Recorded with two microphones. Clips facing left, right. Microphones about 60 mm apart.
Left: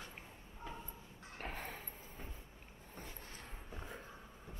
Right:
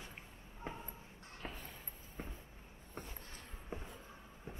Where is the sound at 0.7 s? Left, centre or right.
Right.